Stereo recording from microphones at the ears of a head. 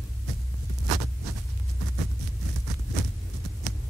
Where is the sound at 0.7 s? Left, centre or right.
Right.